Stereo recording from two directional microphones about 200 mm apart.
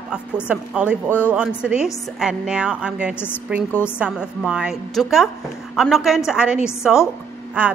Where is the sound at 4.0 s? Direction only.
5° right (ahead or behind).